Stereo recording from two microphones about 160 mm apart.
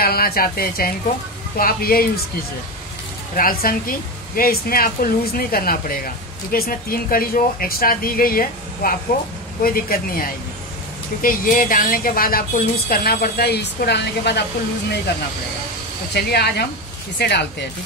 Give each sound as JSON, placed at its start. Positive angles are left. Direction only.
{"t": 0.0, "sound": "a woman's voice", "side_deg": 70}
{"t": 3.3, "sound": "a woman's voice", "side_deg": 60}
{"t": 16.1, "sound": "speech", "side_deg": 90}